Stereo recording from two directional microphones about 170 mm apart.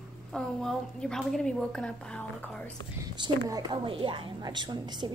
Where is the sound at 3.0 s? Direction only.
20° right (ahead or behind).